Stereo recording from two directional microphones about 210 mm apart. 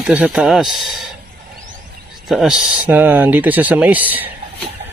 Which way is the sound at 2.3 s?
Centre (ahead or behind).